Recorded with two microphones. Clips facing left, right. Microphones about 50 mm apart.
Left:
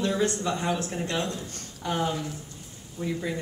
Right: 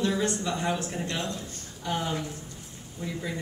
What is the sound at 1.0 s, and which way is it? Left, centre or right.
Speech, left.